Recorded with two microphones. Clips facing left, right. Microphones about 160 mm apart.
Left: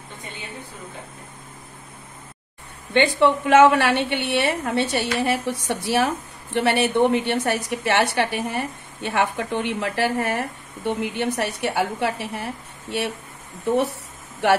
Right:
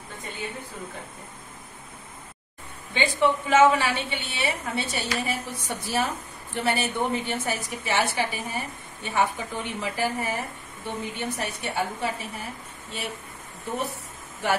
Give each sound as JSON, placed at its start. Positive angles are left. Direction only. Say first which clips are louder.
{"t": 2.9, "sound": "a woman's voice", "louder": "left 5 dB", "side_deg": 65}
{"t": 6.5, "sound": "a woman's voice", "louder": "left 7 dB", "side_deg": 70}